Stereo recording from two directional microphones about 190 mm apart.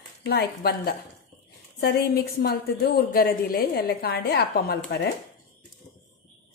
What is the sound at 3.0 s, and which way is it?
A woman's voice, 50° left (ahead or behind).